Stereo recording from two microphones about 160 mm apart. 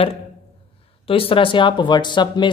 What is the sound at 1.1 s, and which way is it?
Speech, 35° left (ahead or behind).